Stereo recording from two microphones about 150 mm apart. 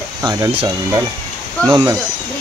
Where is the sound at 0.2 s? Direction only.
20° right (ahead or behind).